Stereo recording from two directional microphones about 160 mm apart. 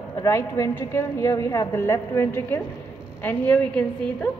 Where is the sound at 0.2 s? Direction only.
20° left (ahead or behind).